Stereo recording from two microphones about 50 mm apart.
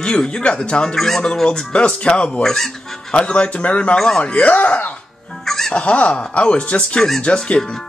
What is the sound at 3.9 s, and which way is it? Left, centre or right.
Speech, centre.